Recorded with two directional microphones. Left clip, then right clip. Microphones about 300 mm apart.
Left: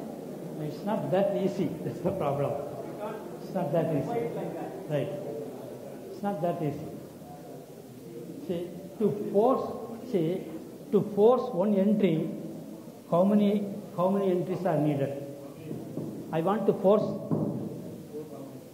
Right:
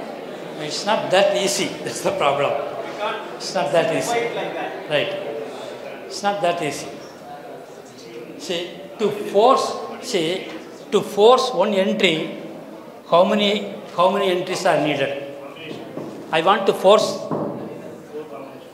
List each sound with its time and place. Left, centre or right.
0.6 s a man's voice: centre
8.5 s a man's voice: centre
9.7 s a sound: centre
10.0 s a man's voice: centre
16.3 s a man's voice: centre
17.1 s a sound: centre